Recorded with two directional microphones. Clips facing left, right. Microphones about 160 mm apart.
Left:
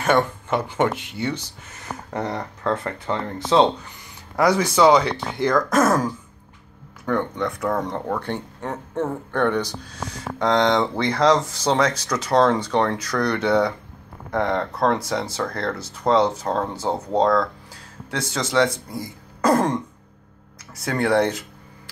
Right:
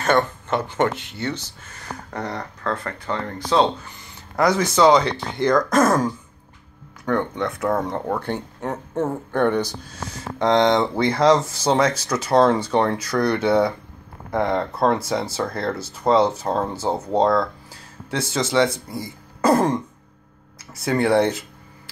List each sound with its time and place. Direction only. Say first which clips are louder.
0.0 s speech: even; 10° left (ahead or behind)
4.4 s speech: even; 10° left (ahead or behind); by 19.8 s 5° right (ahead or behind)
20.8 s speech: right 2 dB; 10° right (ahead or behind)